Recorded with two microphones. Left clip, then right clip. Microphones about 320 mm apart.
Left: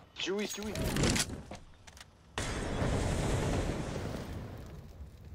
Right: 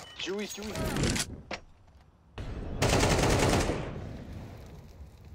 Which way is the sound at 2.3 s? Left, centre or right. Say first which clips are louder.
Left 6 dB; left.